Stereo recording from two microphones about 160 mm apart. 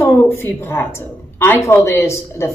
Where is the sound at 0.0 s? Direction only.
15° left (ahead or behind).